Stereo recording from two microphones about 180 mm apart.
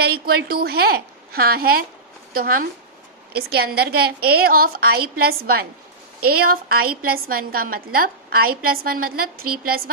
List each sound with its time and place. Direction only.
0.0 s a woman's voice: 60° right (ahead or behind)